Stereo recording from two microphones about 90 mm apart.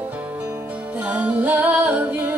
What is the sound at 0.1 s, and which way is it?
Music, 15° right (ahead or behind).